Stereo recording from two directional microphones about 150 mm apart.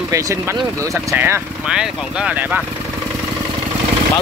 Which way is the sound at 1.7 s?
5° right (ahead or behind).